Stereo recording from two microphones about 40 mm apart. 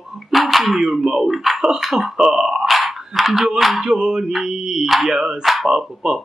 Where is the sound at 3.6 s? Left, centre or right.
Centre.